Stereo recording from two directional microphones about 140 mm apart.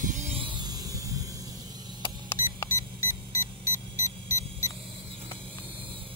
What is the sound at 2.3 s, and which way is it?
Vehicle, 20° left (ahead or behind).